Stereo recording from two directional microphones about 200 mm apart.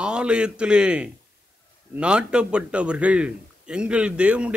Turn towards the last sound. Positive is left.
turn(degrees=-5)  # may be behind; listen again after turning